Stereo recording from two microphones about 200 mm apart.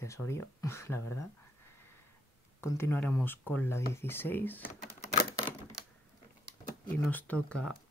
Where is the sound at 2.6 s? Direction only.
15° left (ahead or behind).